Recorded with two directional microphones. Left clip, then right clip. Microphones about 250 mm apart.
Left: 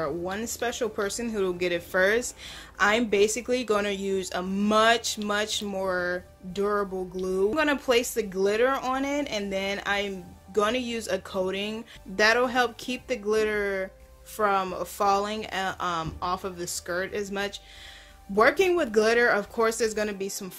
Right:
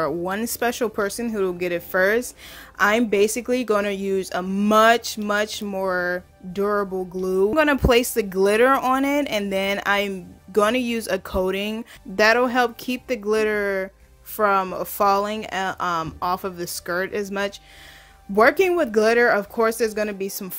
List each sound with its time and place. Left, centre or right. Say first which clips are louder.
0.0 s speech: right 6 dB; right